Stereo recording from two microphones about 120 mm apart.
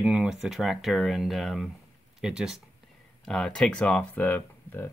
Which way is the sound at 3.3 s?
5° left (ahead or behind).